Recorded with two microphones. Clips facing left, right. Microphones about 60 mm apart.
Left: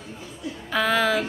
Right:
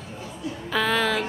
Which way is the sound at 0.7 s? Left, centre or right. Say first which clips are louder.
Left 2 dB; centre.